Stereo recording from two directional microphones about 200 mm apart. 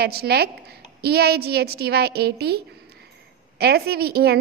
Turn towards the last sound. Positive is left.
turn(degrees=-55)  # may be behind; listen again after turning